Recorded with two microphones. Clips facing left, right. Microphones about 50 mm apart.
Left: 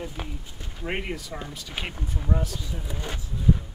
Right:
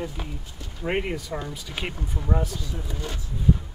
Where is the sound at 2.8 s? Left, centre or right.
Centre.